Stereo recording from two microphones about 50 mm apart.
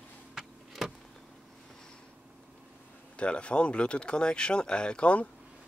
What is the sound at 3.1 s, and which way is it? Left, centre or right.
Speech, left.